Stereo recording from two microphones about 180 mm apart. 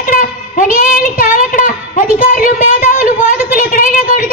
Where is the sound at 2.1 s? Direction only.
45° left (ahead or behind).